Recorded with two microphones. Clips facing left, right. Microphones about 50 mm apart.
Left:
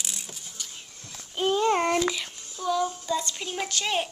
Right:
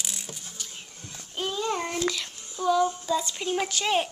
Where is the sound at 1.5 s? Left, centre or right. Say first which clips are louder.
Left 7 dB; left.